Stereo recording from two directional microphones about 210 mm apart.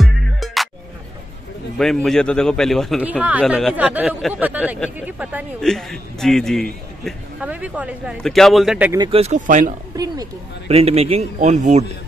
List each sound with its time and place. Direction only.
0.0 s music: centre (ahead or behind)
1.8 s a man's voice: centre (ahead or behind)
9.0 s speech: 30° right (ahead or behind)
9.9 s speech: 20° right (ahead or behind)
10.7 s speech: 30° right (ahead or behind)